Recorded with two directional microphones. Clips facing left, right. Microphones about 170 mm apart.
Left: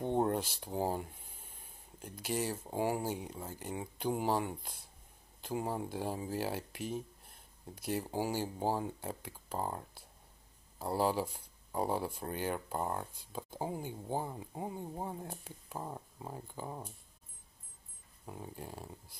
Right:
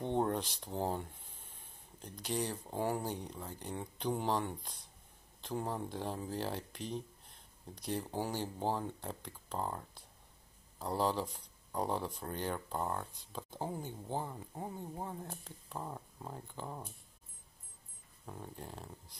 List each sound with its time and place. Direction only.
0.0 s speech: 10° left (ahead or behind)
18.2 s speech: 10° left (ahead or behind)